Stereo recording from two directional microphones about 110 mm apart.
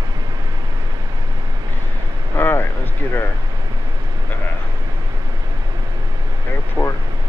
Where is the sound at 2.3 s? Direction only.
20° left (ahead or behind).